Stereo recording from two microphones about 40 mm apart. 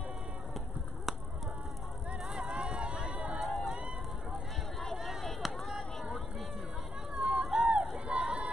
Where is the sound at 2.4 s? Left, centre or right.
Right.